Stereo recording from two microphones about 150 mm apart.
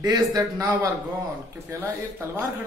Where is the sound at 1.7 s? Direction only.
15° right (ahead or behind).